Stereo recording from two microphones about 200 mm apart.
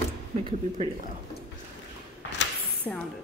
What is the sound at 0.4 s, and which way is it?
Speech, 30° right (ahead or behind).